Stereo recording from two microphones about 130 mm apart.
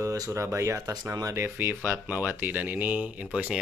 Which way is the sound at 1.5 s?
15° right (ahead or behind).